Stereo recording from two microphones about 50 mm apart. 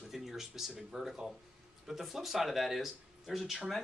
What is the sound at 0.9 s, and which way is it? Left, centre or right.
Speech, centre.